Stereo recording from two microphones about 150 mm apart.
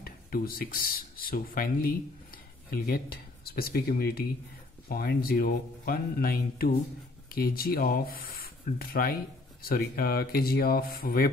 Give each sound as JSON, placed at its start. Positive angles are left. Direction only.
{"t": 0.0, "sound": "speech", "side_deg": 80}